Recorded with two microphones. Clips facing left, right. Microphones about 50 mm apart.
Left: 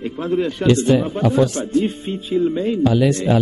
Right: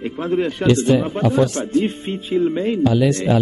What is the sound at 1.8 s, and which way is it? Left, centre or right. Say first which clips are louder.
Speech: even; right.